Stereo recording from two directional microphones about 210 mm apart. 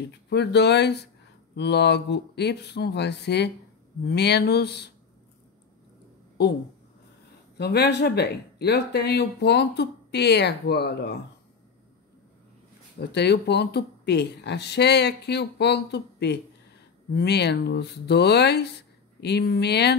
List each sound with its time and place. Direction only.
0.3 s speech: 55° left (ahead or behind)
7.5 s speech: 50° left (ahead or behind)
13.0 s speech: 50° left (ahead or behind)